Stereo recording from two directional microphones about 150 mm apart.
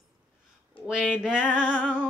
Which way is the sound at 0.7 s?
35° left (ahead or behind).